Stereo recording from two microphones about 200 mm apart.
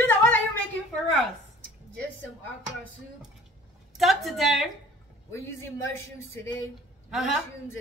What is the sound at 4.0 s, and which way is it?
Speech, centre (ahead or behind).